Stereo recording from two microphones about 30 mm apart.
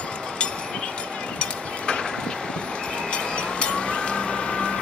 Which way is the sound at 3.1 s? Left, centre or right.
Left.